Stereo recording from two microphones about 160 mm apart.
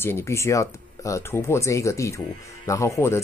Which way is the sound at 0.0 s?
15° left (ahead or behind).